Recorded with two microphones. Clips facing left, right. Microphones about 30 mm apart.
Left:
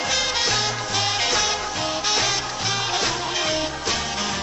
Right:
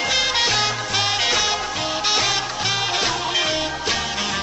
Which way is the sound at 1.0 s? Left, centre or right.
Centre.